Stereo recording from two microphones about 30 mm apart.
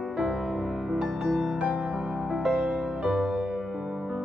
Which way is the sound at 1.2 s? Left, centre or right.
Centre.